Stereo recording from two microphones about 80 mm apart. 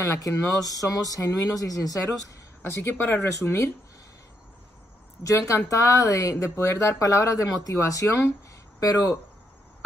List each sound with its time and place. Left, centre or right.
0.0 s speech: left
2.6 s speech: left
5.7 s speech: left